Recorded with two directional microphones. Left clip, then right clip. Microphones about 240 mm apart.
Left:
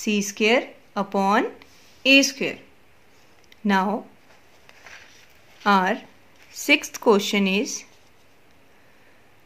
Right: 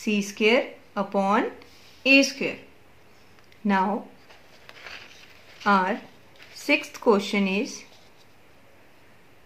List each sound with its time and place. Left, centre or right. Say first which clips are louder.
0.0 s speech: left 1 dB; left
3.6 s speech: left 2 dB; left
5.6 s speech: left 2 dB; left